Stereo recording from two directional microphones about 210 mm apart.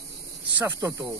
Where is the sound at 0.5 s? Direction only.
10° right (ahead or behind).